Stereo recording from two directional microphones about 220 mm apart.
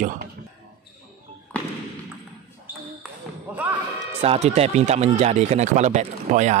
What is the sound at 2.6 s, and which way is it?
Basketball bounce, 10° right (ahead or behind).